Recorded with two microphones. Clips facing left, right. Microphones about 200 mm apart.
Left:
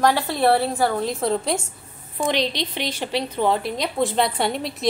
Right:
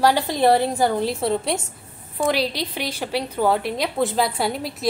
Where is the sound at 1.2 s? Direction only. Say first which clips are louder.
Even; centre (ahead or behind).